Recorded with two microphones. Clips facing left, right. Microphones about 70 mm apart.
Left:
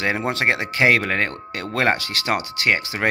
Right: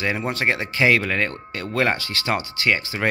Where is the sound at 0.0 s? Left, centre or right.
Left.